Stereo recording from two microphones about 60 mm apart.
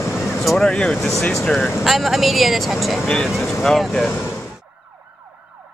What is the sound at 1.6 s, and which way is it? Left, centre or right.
Speech, centre.